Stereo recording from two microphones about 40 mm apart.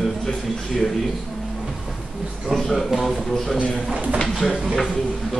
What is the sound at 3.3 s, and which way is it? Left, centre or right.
A man's voice, centre.